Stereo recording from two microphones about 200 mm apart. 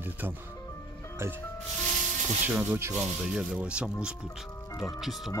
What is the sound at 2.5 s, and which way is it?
A man's voice, 10° right (ahead or behind).